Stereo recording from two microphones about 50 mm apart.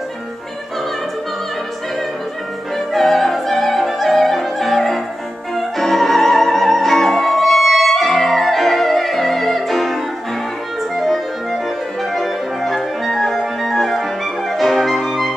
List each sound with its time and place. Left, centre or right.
2.9 s music: centre
12.0 s music: centre